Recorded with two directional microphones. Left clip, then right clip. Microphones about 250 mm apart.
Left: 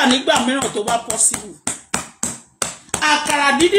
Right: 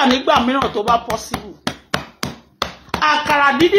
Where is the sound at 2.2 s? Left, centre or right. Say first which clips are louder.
Right 2 dB; centre.